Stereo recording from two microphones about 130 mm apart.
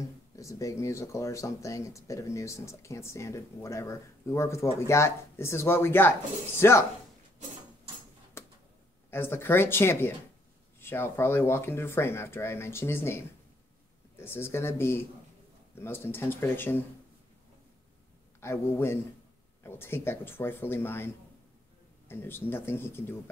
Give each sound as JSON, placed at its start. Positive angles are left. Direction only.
{"t": 0.4, "sound": "speech", "side_deg": 25}
{"t": 9.1, "sound": "speech", "side_deg": 15}
{"t": 14.2, "sound": "speech", "side_deg": 20}
{"t": 18.4, "sound": "speech", "side_deg": 20}